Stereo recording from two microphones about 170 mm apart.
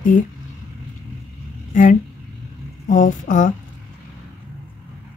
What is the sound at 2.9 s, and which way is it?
Speech, 50° left (ahead or behind).